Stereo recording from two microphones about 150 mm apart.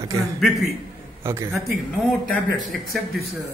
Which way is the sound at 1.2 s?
15° right (ahead or behind).